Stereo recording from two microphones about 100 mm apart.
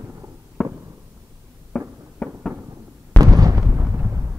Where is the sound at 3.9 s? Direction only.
20° right (ahead or behind).